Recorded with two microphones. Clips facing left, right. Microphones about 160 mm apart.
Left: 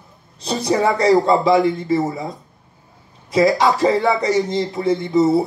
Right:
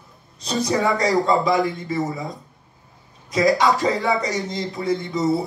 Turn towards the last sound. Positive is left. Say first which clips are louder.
# left 6 dB
turn(degrees=20)  # may be behind; listen again after turning